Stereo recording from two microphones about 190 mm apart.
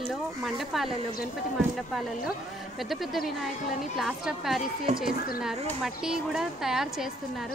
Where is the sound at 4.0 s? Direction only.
Centre (ahead or behind).